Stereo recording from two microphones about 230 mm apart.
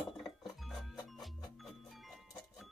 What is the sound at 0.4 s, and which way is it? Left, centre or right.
Music, centre.